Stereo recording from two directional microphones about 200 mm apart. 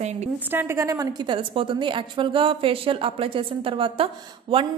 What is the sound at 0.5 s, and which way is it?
A woman's voice, 10° right (ahead or behind).